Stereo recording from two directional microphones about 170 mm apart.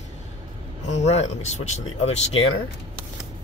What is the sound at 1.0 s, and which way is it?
Speech, 40° left (ahead or behind).